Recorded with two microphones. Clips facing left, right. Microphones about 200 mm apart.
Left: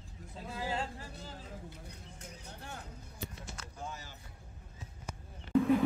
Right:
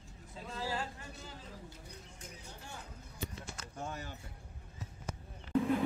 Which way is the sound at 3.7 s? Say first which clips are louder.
Right 3 dB; 55° right (ahead or behind).